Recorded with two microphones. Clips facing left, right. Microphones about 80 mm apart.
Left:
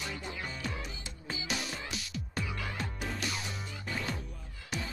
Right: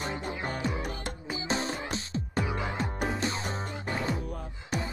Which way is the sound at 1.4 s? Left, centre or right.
Right.